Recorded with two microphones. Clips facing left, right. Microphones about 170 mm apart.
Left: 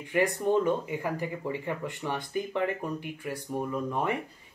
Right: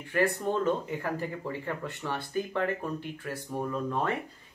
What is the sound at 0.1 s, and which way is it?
Speech, 15° left (ahead or behind).